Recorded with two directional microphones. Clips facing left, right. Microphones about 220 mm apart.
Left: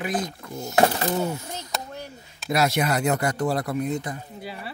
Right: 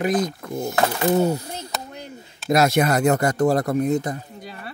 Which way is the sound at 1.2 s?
35° right (ahead or behind).